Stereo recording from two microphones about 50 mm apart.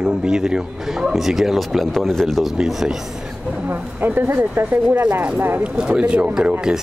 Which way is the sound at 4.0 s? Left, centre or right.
Right.